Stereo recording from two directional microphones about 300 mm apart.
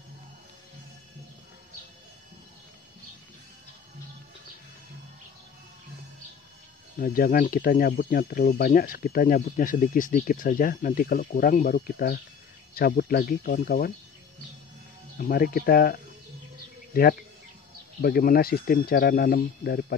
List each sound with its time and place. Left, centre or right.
7.0 s speech: left
15.1 s speech: left
18.0 s speech: left